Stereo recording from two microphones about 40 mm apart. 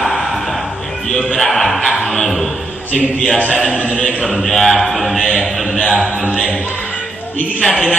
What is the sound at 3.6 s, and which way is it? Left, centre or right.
Speech, left.